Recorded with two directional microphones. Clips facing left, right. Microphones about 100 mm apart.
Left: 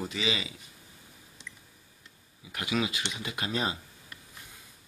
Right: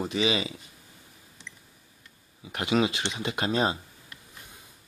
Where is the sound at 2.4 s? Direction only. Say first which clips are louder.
Right 6 dB; 30° right (ahead or behind).